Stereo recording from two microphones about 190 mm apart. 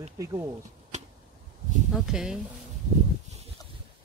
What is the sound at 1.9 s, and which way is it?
Speech, 5° right (ahead or behind).